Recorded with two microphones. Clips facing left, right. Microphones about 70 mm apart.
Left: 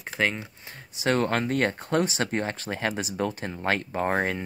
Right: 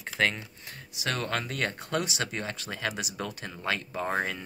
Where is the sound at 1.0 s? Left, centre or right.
Left.